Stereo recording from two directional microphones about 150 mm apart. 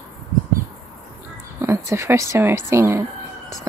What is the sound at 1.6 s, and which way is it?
Speech, 20° right (ahead or behind).